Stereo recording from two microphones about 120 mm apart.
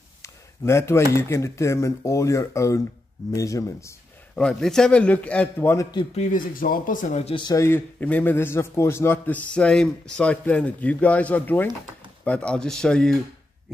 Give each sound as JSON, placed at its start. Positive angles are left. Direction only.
{"t": 0.2, "sound": "speech", "side_deg": 25}
{"t": 4.4, "sound": "a man's voice", "side_deg": 5}
{"t": 6.9, "sound": "speech", "side_deg": 90}
{"t": 7.2, "sound": "speech", "side_deg": 40}
{"t": 7.5, "sound": "a man's voice", "side_deg": 25}